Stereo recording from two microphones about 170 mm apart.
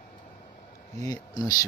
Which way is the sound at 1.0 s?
25° left (ahead or behind).